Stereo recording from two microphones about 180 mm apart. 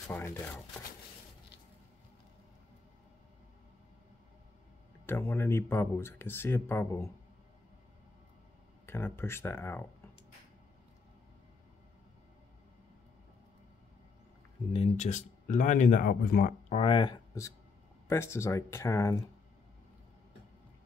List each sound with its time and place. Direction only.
0.1 s speech: 10° left (ahead or behind)
5.0 s speech: 15° left (ahead or behind)
8.8 s speech: 15° left (ahead or behind)
14.7 s speech: 35° left (ahead or behind); by 16.5 s 55° left (ahead or behind)
16.6 s speech: 35° left (ahead or behind); by 19.2 s 15° left (ahead or behind)